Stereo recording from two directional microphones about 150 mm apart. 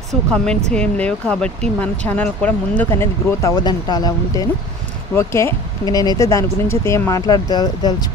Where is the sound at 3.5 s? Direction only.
30° left (ahead or behind).